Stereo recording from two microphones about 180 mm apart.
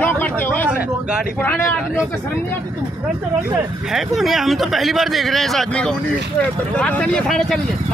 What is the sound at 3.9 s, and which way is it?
Speech, centre (ahead or behind).